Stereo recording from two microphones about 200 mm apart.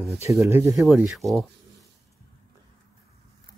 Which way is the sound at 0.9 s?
Centre (ahead or behind).